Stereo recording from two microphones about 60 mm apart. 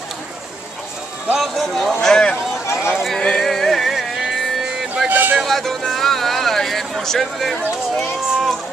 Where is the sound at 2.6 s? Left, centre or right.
Left.